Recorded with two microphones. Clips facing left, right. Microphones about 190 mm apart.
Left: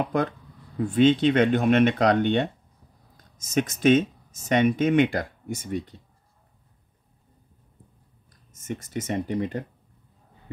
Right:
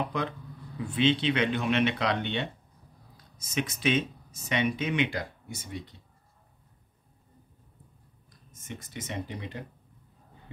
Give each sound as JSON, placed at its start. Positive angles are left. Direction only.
{"t": 0.1, "sound": "speech", "side_deg": 50}
{"t": 8.5, "sound": "speech", "side_deg": 45}